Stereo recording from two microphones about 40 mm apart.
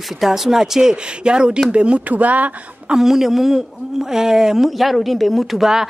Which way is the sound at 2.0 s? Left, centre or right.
Right.